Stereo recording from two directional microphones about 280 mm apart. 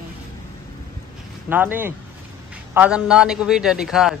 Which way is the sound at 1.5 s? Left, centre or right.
Centre.